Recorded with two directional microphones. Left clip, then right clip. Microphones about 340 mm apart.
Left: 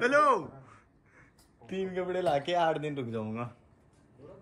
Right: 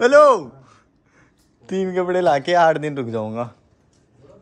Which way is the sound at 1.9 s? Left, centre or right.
Right.